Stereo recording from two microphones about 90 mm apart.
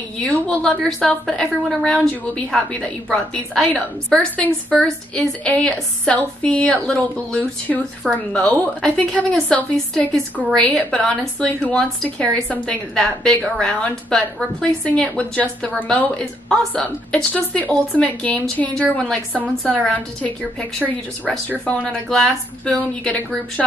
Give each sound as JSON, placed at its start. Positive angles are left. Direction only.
{"t": 0.2, "sound": "a woman's voice", "side_deg": 10}
{"t": 7.7, "sound": "speech", "side_deg": 0}
{"t": 8.1, "sound": "a woman's voice", "side_deg": 10}
{"t": 22.1, "sound": "a woman's voice", "side_deg": 5}